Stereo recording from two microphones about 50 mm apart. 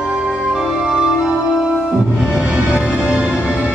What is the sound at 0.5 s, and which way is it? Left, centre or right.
Music, centre.